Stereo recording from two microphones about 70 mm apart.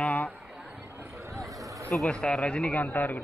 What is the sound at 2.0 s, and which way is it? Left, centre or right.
Speech, centre.